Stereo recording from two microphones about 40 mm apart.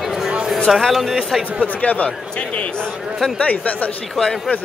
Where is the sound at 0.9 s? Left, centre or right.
Centre.